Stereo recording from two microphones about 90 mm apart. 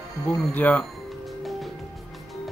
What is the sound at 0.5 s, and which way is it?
Speech, 15° left (ahead or behind).